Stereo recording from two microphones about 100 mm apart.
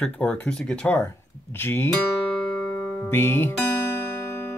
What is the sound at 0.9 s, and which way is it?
Speech, 20° left (ahead or behind).